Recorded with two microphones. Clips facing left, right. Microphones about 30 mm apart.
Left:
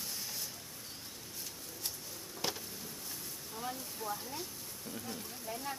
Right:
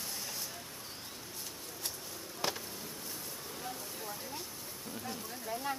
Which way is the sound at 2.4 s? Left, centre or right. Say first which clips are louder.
Right 2 dB; centre.